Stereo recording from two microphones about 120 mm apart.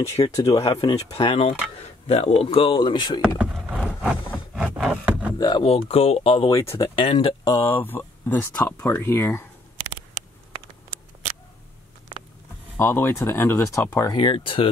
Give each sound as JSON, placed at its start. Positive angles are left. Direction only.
{"t": 0.2, "sound": "speech", "side_deg": 30}
{"t": 0.6, "sound": "speech", "side_deg": 55}
{"t": 0.8, "sound": "speech", "side_deg": 40}
{"t": 3.2, "sound": "rowboat", "side_deg": -10}
{"t": 4.6, "sound": "wood", "side_deg": -10}
{"t": 5.6, "sound": "speech", "side_deg": 55}
{"t": 6.5, "sound": "speech", "side_deg": 20}
{"t": 6.8, "sound": "speech", "side_deg": 50}
{"t": 7.6, "sound": "speech", "side_deg": 15}
{"t": 12.7, "sound": "speech", "side_deg": 20}
{"t": 14.1, "sound": "speech", "side_deg": 45}